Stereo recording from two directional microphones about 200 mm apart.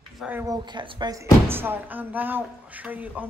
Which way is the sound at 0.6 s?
25° right (ahead or behind).